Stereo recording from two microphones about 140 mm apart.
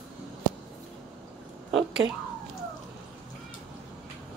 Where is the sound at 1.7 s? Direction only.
Centre (ahead or behind).